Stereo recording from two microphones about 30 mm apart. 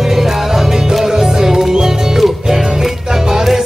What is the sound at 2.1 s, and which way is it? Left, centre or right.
Music, centre.